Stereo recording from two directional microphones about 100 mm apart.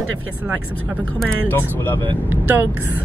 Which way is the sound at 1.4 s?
20° left (ahead or behind).